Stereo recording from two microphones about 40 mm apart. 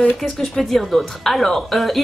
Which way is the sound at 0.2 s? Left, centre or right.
Centre.